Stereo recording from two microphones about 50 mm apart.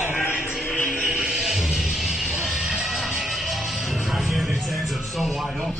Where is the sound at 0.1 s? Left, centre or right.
Left.